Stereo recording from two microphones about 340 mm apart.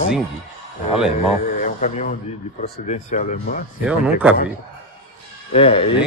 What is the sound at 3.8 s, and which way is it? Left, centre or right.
Speech, centre.